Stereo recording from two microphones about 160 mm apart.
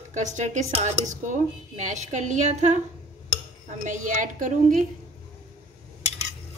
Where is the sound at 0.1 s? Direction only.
50° right (ahead or behind).